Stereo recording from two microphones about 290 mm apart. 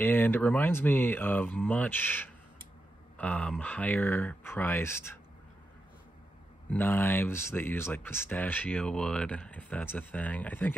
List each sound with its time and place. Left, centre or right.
0.0 s speech: centre
6.7 s speech: centre